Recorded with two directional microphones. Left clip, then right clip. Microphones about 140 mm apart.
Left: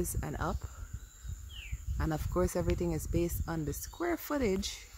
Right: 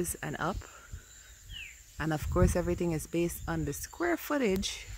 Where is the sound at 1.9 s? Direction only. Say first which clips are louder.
Right 3 dB; 25° right (ahead or behind).